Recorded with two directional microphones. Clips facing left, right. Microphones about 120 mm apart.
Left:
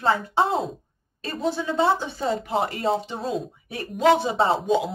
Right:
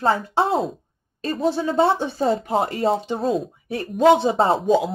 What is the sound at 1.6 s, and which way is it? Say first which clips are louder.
Speech: right 2 dB; 40° right (ahead or behind).